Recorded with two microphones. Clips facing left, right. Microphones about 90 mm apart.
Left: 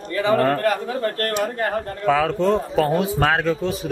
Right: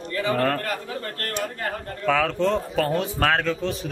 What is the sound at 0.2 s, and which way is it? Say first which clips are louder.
Speech: left 5 dB; 20° left (ahead or behind).